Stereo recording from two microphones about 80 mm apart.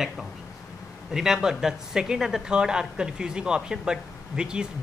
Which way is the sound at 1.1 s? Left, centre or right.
Centre.